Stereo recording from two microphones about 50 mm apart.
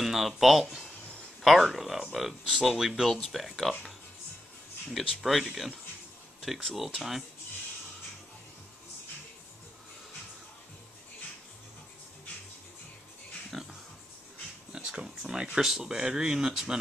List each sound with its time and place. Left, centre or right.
0.0 s speech: centre
4.8 s speech: centre
13.5 s pig: centre
14.7 s a sound: centre
15.5 s speech: centre